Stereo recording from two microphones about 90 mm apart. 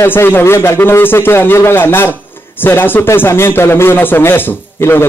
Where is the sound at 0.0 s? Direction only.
25° left (ahead or behind).